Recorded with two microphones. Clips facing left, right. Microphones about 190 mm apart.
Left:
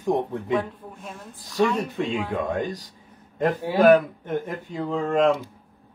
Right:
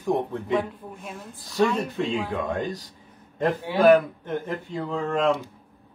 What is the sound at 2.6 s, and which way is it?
Speech, 15° left (ahead or behind).